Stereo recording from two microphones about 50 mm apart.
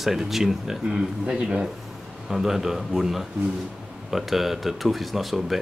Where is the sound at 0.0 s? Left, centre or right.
Centre.